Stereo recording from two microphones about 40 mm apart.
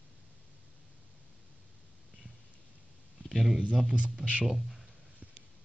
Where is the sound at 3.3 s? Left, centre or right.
Centre.